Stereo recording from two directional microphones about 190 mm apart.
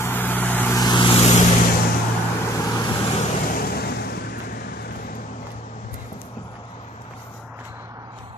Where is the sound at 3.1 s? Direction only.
50° left (ahead or behind).